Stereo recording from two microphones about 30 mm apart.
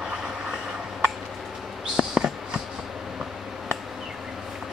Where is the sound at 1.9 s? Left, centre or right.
Right.